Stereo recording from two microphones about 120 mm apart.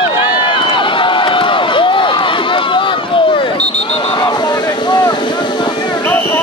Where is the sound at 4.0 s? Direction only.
40° left (ahead or behind).